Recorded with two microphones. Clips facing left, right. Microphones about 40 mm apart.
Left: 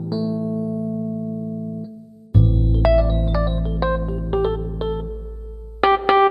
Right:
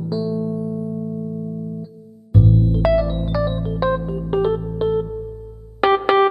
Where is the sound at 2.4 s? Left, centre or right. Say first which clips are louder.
Right 7 dB; left.